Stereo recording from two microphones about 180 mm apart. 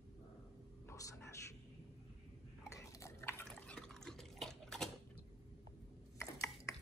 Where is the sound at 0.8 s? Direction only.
15° left (ahead or behind).